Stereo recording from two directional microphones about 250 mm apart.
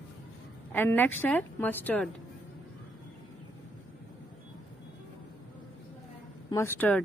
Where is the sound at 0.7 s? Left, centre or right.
Centre.